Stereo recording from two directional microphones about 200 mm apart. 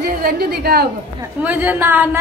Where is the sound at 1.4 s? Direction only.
10° right (ahead or behind).